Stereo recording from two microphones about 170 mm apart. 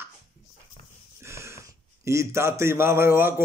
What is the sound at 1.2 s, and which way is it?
A man's voice, 15° right (ahead or behind).